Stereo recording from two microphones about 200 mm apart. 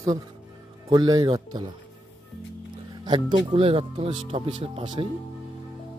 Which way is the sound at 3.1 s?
25° right (ahead or behind).